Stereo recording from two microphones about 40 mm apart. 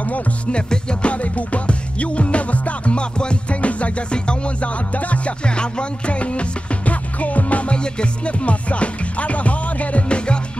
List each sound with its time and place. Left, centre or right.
0.5 s music: left
1.1 s music: left
7.7 s music: left